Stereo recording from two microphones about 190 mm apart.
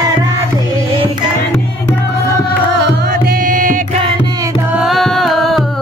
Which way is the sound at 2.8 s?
55° right (ahead or behind).